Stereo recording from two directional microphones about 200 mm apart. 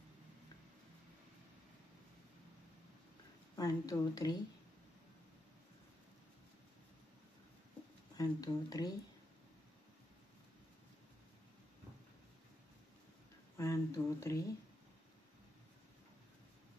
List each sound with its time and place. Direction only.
3.5 s speech: 20° left (ahead or behind)
8.2 s speech: 20° left (ahead or behind)
13.6 s speech: 15° left (ahead or behind)